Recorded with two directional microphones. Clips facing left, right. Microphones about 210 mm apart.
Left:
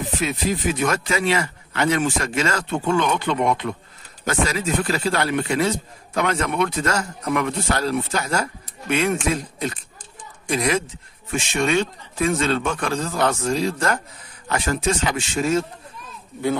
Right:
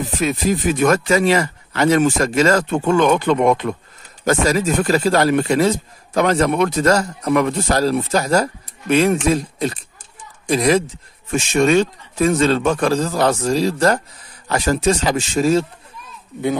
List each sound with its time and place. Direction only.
0.2 s a man's voice: 45° right (ahead or behind)